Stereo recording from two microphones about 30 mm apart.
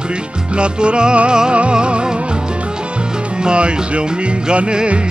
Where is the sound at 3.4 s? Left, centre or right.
Right.